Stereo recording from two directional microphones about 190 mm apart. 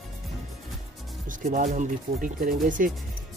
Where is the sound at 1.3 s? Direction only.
45° right (ahead or behind).